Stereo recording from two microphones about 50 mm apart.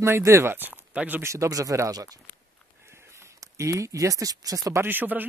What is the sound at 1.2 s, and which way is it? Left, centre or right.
Speech, right.